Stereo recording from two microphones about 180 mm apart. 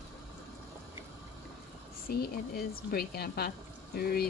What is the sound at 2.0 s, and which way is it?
Speech, 55° left (ahead or behind).